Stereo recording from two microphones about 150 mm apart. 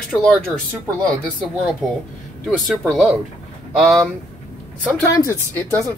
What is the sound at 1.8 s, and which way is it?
Speech, centre (ahead or behind).